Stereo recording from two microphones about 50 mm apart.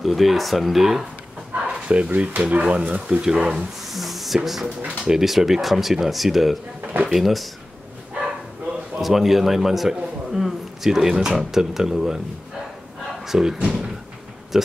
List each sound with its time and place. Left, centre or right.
0.0 s speech: centre
1.5 s speech: right
3.2 s a man's voice: centre
3.9 s a sound: centre
4.4 s speech: centre
9.0 s a man's voice: centre
13.3 s a man's voice: centre
14.5 s a man's voice: centre